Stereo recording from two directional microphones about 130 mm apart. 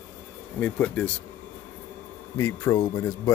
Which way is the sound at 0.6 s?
10° left (ahead or behind).